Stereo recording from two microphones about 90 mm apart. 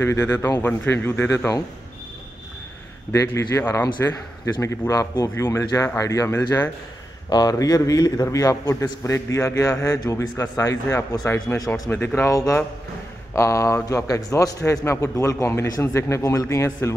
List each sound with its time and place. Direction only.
0.0 s speech: 30° left (ahead or behind)
3.1 s a man's voice: 35° left (ahead or behind)
7.2 s a man's voice: 45° left (ahead or behind)